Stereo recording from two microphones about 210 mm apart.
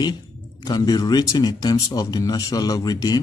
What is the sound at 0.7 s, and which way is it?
A man's voice, 20° left (ahead or behind).